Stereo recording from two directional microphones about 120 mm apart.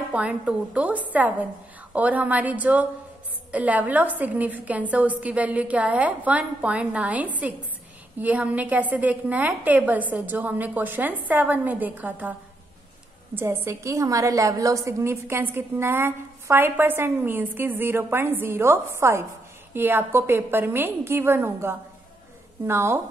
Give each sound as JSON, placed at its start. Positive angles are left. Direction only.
{"t": 0.1, "sound": "a woman's voice", "side_deg": -10}